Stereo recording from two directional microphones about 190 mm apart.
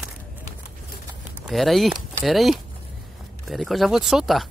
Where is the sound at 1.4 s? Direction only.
Centre (ahead or behind).